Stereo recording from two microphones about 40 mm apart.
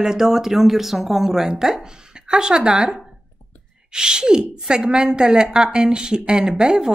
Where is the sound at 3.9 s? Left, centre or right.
Centre.